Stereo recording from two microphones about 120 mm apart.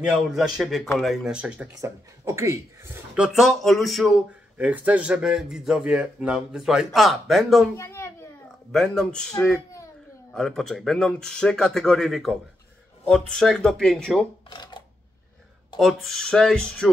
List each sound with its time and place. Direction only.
0.0 s a man's voice: 5° right (ahead or behind)
1.8 s speech: 25° right (ahead or behind)
3.2 s a man's voice: 5° right (ahead or behind)
7.7 s a sound: 25° left (ahead or behind)
8.7 s a man's voice: 5° left (ahead or behind)
10.3 s a man's voice: 5° left (ahead or behind)
14.5 s a sound: 40° left (ahead or behind)
15.8 s a man's voice: centre (ahead or behind)